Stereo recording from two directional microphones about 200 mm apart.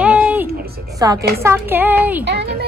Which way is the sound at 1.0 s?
20° right (ahead or behind).